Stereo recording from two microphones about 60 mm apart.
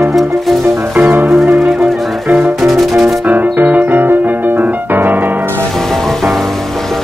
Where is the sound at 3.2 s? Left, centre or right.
Right.